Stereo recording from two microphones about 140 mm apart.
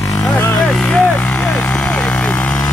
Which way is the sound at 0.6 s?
10° left (ahead or behind).